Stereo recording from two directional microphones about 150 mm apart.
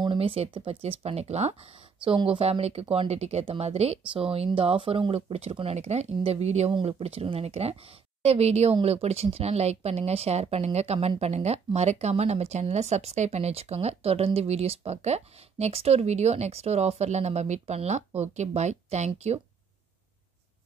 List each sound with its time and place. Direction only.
0.0 s speech: 35° right (ahead or behind)